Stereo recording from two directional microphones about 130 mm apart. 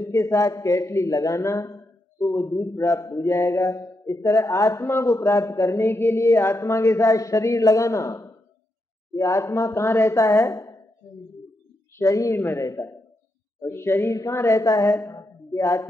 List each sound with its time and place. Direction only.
0.0 s speech: 20° left (ahead or behind)
12.0 s a woman's voice: 25° left (ahead or behind)